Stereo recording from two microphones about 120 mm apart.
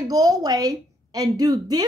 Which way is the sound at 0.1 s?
30° right (ahead or behind).